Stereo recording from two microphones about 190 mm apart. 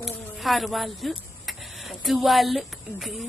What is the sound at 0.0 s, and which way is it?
Speech, centre (ahead or behind).